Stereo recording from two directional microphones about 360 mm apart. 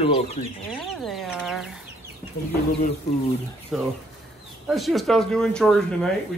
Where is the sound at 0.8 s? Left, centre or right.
Centre.